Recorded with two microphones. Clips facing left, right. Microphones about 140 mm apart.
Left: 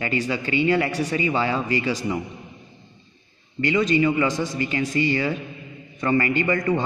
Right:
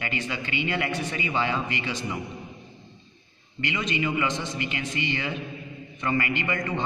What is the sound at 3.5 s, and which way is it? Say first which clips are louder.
A man's voice: left 9 dB; 35° left (ahead or behind).